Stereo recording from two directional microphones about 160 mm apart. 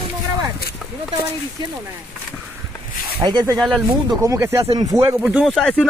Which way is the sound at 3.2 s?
25° right (ahead or behind).